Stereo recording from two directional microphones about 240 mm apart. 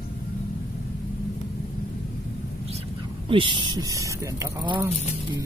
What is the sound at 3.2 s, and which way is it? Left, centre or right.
Speech, right.